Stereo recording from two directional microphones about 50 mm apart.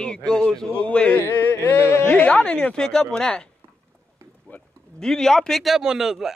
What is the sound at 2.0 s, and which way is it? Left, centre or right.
Speech, left.